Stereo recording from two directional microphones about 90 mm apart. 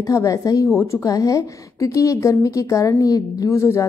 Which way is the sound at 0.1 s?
40° left (ahead or behind).